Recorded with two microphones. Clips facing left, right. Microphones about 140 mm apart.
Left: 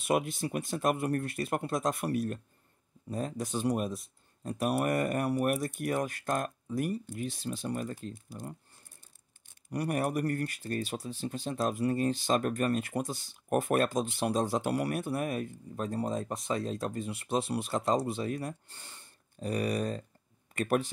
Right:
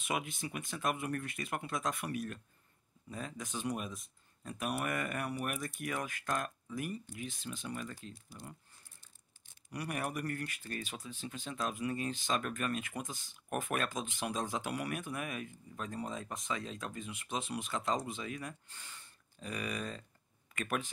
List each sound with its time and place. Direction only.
0.0 s speech: 35° left (ahead or behind); by 8.5 s 50° left (ahead or behind)
9.7 s speech: 40° left (ahead or behind)